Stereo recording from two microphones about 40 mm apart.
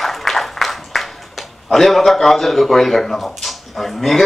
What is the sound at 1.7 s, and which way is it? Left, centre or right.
Speech, centre.